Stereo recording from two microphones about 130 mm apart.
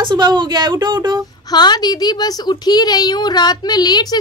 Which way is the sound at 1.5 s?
35° left (ahead or behind).